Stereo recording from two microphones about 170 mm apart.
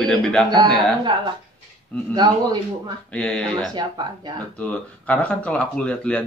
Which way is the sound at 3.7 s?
25° right (ahead or behind).